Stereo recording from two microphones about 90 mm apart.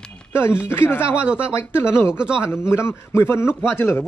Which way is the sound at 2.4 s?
30° left (ahead or behind).